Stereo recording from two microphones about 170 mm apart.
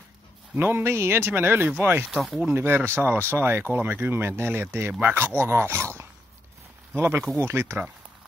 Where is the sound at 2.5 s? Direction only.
15° right (ahead or behind).